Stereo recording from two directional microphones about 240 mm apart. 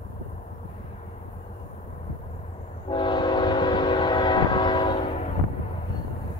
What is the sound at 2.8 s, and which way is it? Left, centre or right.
Train, centre.